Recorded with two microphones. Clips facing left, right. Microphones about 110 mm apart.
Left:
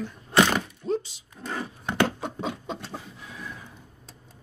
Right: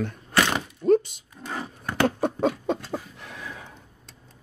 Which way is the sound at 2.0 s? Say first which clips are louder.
Right 8 dB; 60° right (ahead or behind).